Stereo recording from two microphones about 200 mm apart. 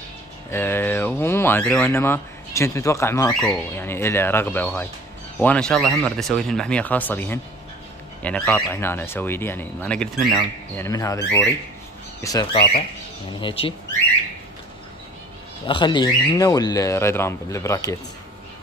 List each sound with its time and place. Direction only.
0.5 s speech: 10° left (ahead or behind)
15.6 s speech: 25° left (ahead or behind)